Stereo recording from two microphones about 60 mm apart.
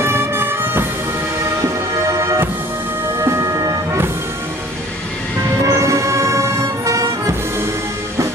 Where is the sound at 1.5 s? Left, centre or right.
Right.